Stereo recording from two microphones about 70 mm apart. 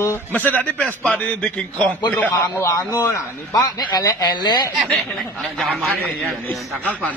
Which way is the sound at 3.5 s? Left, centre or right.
Left.